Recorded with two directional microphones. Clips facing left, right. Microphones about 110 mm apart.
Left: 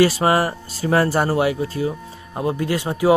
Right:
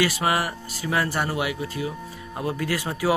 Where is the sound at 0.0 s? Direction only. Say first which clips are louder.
Left 7 dB; 35° left (ahead or behind).